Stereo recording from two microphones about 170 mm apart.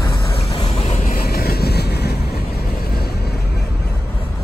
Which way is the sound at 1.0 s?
65° left (ahead or behind).